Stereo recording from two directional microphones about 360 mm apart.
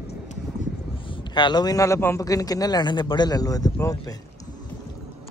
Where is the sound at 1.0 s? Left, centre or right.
Centre.